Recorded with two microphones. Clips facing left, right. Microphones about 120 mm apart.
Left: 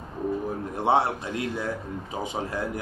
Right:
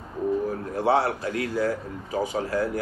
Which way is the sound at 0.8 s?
20° left (ahead or behind).